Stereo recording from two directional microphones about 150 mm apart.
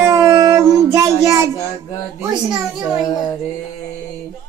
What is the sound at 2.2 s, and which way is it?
Speech, 5° right (ahead or behind).